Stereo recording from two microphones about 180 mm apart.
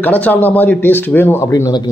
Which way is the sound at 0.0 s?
10° left (ahead or behind).